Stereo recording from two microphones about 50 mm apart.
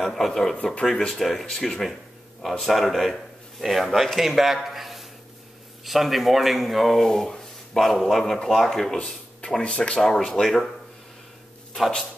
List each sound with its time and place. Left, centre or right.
0.0 s speech: centre
4.6 s a sound: centre
5.9 s speech: centre
7.1 s speech: centre
8.9 s a sound: left
9.6 s speech: left
10.0 s speech: centre